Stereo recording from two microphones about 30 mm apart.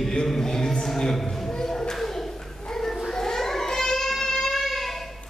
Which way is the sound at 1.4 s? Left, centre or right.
Left.